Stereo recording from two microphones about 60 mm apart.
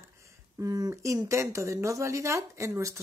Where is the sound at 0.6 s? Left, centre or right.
Right.